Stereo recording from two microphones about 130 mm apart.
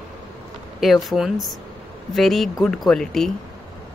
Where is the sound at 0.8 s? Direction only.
Centre (ahead or behind).